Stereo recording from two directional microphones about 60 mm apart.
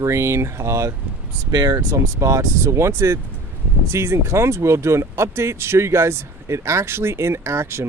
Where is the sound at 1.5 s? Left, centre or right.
Right.